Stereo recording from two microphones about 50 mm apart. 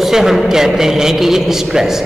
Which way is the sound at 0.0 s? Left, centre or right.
Centre.